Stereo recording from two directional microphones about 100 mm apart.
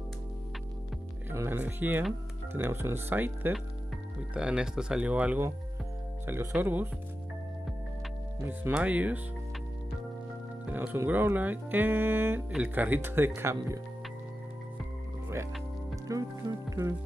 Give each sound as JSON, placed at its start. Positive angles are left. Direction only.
{"t": 1.3, "sound": "speech", "side_deg": -25}
{"t": 4.3, "sound": "speech", "side_deg": -10}
{"t": 8.4, "sound": "speech", "side_deg": -20}
{"t": 10.7, "sound": "speech", "side_deg": -20}
{"t": 16.1, "sound": "speech", "side_deg": -35}